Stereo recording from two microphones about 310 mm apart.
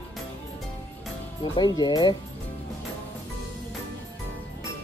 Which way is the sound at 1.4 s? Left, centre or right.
Centre.